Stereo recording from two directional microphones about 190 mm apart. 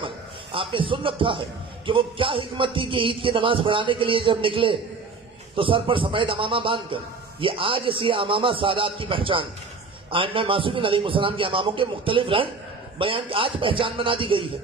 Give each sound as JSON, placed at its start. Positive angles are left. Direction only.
{"t": 0.0, "sound": "chuckle", "side_deg": -25}
{"t": 1.9, "sound": "a man's voice", "side_deg": -25}